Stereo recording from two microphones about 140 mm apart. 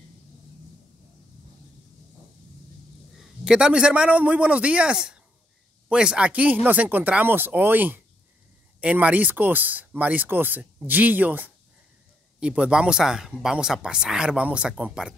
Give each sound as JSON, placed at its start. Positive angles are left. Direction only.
{"t": 3.2, "sound": "a man's voice", "side_deg": -5}